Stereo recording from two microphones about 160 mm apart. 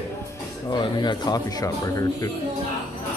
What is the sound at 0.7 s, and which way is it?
Speech, 30° left (ahead or behind).